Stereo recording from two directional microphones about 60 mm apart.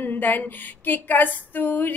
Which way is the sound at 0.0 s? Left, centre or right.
Left.